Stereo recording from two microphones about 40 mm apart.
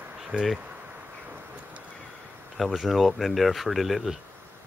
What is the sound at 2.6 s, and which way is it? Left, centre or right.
Speech, centre.